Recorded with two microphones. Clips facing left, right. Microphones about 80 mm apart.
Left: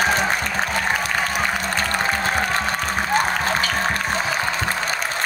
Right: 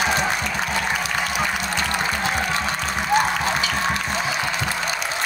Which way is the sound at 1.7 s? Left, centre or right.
Left.